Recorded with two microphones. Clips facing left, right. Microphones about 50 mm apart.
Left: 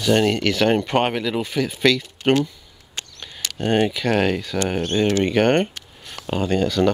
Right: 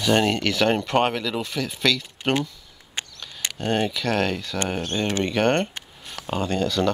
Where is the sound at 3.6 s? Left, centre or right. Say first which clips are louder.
Left 4 dB; centre.